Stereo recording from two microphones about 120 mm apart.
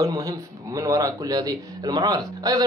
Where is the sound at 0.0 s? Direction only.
30° right (ahead or behind).